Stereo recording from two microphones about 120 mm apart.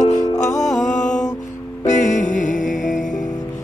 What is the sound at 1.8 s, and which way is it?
Music, 90° left.